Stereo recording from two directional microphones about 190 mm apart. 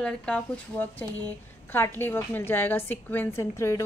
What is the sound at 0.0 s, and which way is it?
A woman's voice, 5° left (ahead or behind).